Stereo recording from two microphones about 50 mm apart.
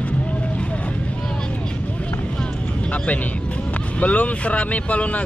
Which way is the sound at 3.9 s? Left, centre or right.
Left.